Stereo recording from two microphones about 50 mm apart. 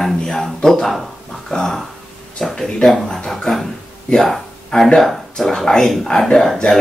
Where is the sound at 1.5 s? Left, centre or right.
Left.